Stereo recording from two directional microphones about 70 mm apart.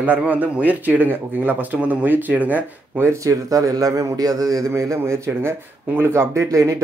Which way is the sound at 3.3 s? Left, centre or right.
Right.